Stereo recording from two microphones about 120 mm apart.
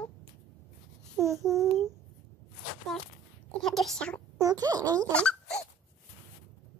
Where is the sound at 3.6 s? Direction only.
Centre (ahead or behind).